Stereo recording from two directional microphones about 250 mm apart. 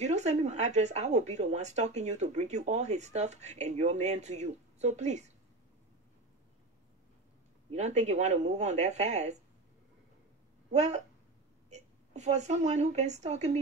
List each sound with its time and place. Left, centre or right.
0.0 s speech: right
7.7 s speech: right
10.7 s a woman's voice: right